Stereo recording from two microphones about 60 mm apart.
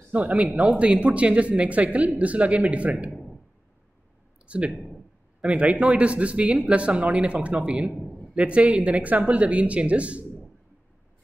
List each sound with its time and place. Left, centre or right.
0.1 s speech: right
4.5 s speech: right
4.7 s a man's voice: centre
5.4 s speech: right